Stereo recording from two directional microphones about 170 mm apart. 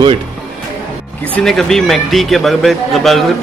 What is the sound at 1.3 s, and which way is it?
A man's voice, 5° left (ahead or behind).